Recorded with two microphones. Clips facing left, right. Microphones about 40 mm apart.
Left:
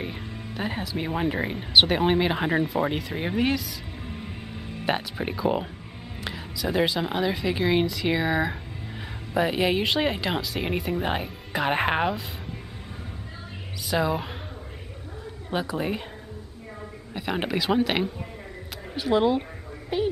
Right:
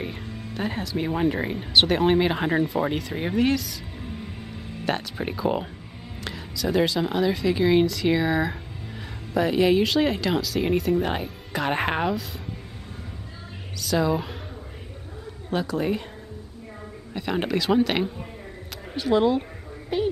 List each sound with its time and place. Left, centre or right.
0.0 s speech: centre
13.7 s speech: centre
15.5 s speech: centre
17.1 s a woman's voice: centre